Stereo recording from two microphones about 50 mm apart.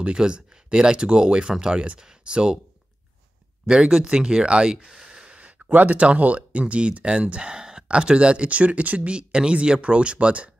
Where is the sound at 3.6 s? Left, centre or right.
Centre.